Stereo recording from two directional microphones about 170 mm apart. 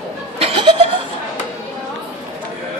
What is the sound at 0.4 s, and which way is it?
Laughter, 30° right (ahead or behind).